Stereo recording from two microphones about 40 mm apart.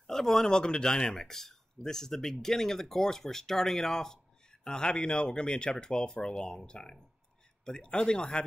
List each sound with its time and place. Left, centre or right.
0.0 s speech: centre